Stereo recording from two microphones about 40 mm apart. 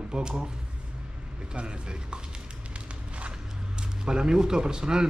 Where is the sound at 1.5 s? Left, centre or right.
Right.